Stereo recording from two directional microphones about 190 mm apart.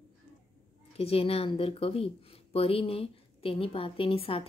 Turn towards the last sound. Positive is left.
turn(degrees=30)  # may be behind; listen again after turning